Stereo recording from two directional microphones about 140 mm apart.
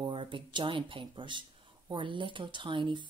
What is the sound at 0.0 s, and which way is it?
Speech, 35° right (ahead or behind).